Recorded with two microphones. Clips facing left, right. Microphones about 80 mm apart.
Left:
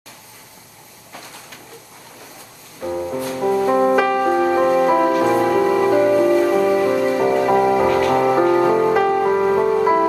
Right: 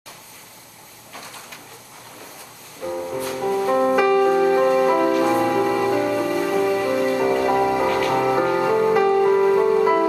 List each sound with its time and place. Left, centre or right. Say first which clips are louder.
2.8 s music: left 3 dB; centre
4.0 s music: even; left; by 9.1 s centre
9.1 s music: even; left